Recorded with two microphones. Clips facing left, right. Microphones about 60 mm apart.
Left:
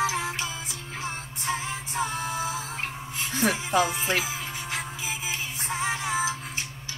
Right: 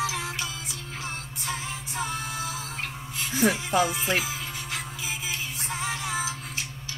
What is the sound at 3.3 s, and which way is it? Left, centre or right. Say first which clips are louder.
Speech: right 2 dB; centre.